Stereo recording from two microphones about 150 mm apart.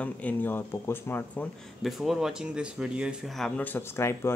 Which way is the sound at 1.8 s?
Centre (ahead or behind).